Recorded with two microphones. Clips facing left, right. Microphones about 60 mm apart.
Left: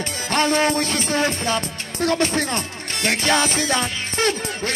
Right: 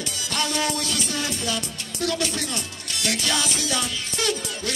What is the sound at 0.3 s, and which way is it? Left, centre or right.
Music, left.